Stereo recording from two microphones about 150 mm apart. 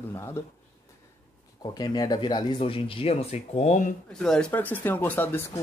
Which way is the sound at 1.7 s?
25° left (ahead or behind).